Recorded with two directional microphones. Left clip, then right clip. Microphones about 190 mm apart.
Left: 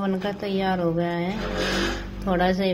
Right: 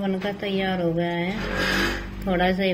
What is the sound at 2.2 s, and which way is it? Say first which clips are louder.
Speech: even; 10° left (ahead or behind).